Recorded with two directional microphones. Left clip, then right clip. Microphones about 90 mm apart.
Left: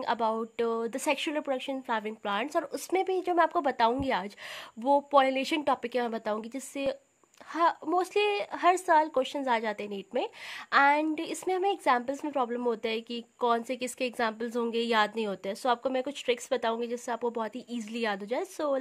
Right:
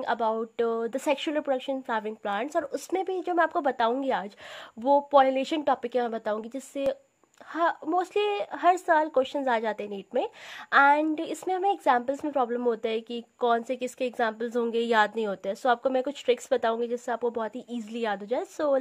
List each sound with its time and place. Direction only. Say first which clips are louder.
0.0 s a woman's voice: right 2 dB; 45° left (ahead or behind)
7.9 s a woman's voice: right 1 dB; 45° left (ahead or behind)